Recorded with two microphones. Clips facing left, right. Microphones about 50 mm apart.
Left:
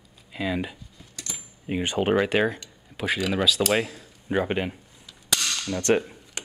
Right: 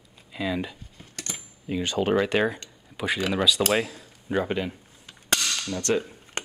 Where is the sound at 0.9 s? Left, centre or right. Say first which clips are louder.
Right 2 dB; right.